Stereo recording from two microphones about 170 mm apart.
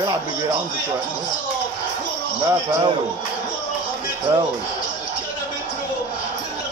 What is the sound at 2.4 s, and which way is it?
Speech, 25° right (ahead or behind).